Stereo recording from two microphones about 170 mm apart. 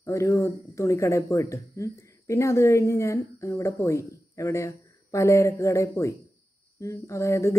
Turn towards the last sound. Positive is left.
turn(degrees=15)  # may be behind; listen again after turning